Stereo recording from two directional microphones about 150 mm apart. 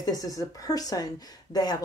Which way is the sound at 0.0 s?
25° left (ahead or behind).